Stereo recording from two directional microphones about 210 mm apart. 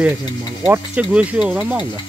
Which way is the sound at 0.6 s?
5° right (ahead or behind).